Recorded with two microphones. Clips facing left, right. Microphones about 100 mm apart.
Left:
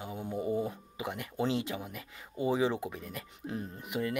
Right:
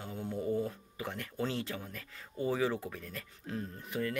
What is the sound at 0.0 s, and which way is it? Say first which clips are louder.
Speech: left 2 dB; 10° left (ahead or behind).